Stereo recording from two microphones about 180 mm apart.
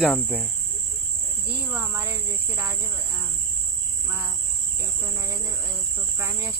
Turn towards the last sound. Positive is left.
turn(degrees=-15)  # may be behind; listen again after turning